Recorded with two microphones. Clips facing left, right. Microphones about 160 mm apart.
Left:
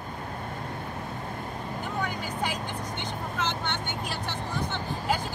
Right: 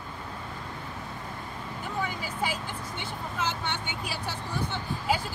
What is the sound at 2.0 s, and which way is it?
Vehicle, 5° right (ahead or behind).